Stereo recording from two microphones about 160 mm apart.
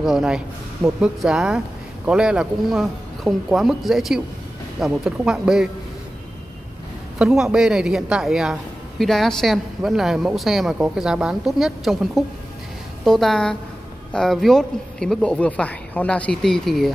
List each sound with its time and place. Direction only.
0.0 s a woman's voice: 5° right (ahead or behind)
7.2 s a woman's voice: centre (ahead or behind)